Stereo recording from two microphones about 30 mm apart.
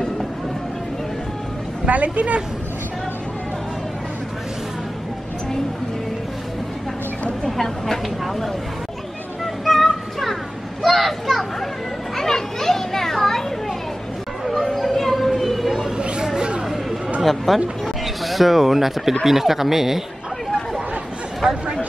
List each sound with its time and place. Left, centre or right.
1.9 s speech: right
7.4 s a sound: centre
9.7 s music: centre
10.8 s children playing: centre
12.2 s children playing: centre
14.6 s a sound: centre
16.0 s a sound: right
17.2 s speech: centre
21.4 s speech: right